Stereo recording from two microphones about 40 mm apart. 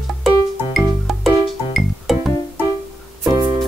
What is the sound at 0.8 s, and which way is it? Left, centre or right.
Music, centre.